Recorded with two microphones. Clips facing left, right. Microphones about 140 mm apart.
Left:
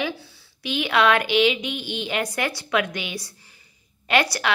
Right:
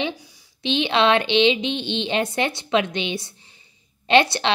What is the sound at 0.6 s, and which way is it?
Speech, 25° right (ahead or behind).